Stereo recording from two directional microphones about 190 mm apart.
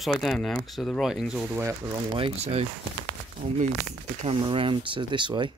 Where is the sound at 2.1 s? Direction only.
30° right (ahead or behind).